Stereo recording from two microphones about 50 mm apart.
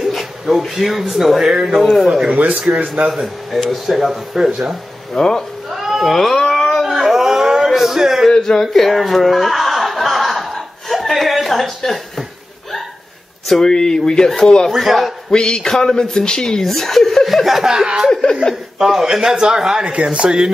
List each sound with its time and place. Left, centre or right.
0.0 s speech: centre
5.1 s speech: centre
5.7 s a sound: centre
6.1 s a sound: centre
8.3 s chuckle: centre
13.5 s speech: centre
14.7 s speech: centre
15.3 s a man's voice: centre
19.9 s speech: right